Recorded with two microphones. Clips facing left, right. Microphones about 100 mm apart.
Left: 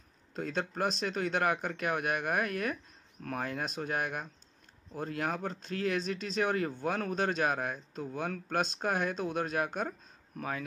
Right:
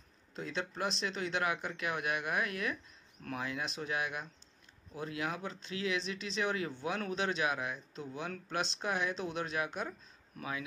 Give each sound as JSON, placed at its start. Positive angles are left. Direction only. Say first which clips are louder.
{"t": 0.3, "sound": "a man's voice", "louder": "left 4 dB", "side_deg": 50}